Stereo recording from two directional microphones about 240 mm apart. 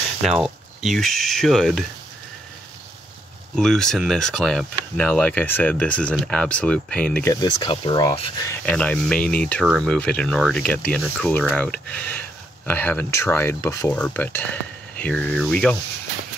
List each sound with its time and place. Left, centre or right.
0.2 s speech: centre
3.5 s speech: centre
7.3 s speech: centre
8.5 s speech: centre